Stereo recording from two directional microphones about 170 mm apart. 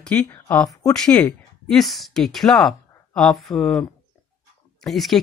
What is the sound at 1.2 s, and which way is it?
Speech, centre (ahead or behind).